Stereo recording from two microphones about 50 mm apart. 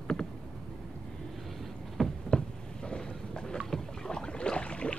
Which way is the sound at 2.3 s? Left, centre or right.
Centre.